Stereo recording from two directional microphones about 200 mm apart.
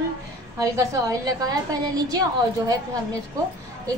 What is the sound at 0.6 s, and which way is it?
A woman's voice, 15° right (ahead or behind).